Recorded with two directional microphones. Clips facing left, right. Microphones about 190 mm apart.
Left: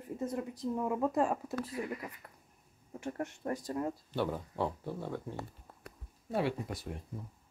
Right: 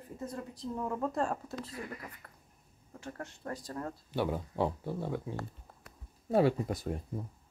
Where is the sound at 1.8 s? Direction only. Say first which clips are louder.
Left 6 dB; 20° left (ahead or behind).